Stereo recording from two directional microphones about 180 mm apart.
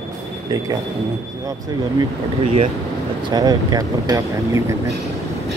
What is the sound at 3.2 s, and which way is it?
Speech, 20° right (ahead or behind).